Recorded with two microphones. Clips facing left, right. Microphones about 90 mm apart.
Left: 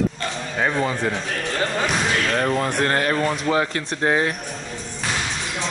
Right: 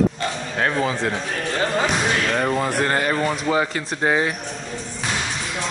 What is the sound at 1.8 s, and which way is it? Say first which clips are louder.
Speech: right 1 dB; 5° right (ahead or behind).